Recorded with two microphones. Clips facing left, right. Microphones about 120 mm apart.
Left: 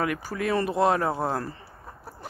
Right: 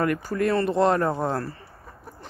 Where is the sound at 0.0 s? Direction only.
5° left (ahead or behind).